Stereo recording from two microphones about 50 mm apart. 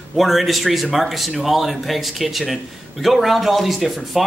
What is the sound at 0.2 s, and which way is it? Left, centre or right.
Speech, centre.